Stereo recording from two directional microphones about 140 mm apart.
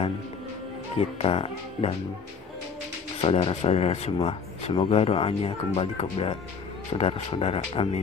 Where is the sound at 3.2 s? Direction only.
45° left (ahead or behind).